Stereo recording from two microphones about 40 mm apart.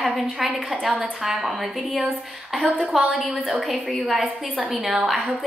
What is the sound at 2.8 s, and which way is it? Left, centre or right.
A woman's voice, centre.